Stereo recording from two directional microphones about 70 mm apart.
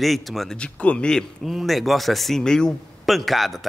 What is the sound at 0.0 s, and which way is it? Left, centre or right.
Speech, centre.